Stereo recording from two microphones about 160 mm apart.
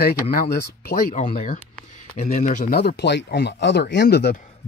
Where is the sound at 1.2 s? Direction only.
55° left (ahead or behind).